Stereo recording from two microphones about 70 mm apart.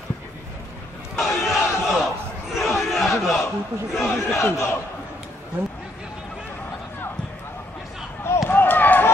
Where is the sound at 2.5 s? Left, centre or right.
Centre.